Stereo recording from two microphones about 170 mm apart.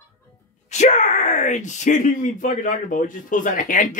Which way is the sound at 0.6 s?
45° left (ahead or behind).